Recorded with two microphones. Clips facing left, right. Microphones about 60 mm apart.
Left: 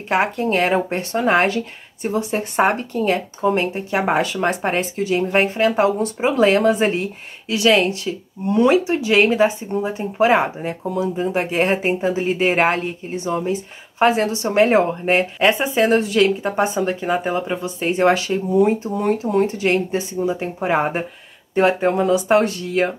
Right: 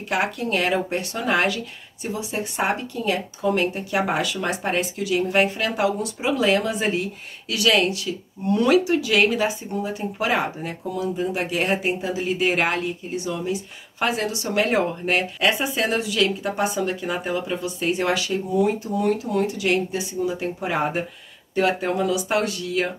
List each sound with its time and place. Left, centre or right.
0.1 s speech: left